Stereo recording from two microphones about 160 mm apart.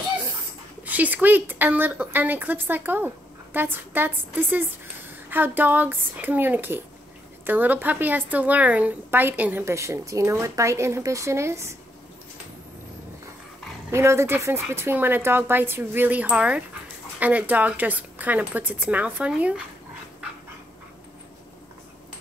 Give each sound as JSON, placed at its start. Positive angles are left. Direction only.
{"t": 0.8, "sound": "a woman's voice", "side_deg": -10}
{"t": 13.8, "sound": "a woman's voice", "side_deg": -15}